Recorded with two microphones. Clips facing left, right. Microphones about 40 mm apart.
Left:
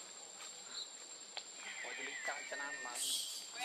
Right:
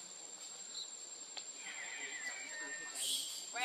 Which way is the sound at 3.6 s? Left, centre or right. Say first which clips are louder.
Right 6 dB; right.